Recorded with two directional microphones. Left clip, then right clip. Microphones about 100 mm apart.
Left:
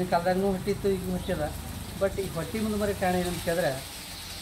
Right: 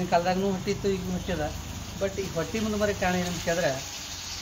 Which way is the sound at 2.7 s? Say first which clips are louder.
Right 1 dB; 5° right (ahead or behind).